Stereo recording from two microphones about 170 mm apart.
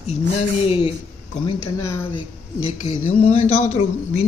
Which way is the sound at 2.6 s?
35° left (ahead or behind).